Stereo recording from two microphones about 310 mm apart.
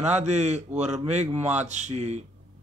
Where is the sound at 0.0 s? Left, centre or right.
Right.